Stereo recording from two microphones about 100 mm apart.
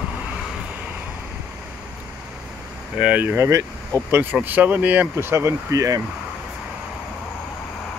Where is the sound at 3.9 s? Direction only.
40° right (ahead or behind).